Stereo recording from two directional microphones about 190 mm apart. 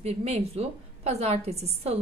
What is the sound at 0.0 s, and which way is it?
A woman's voice, 35° right (ahead or behind).